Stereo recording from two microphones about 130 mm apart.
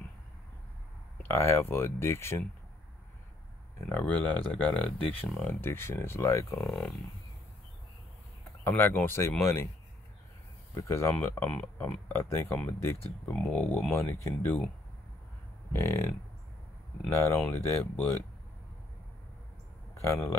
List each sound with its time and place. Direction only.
1.2 s speech: 20° left (ahead or behind)
3.7 s speech: 15° left (ahead or behind)
6.7 s speech: centre (ahead or behind)
8.6 s speech: 15° left (ahead or behind)
10.7 s speech: 20° left (ahead or behind)
15.7 s speech: 20° left (ahead or behind)
19.9 s speech: 20° left (ahead or behind)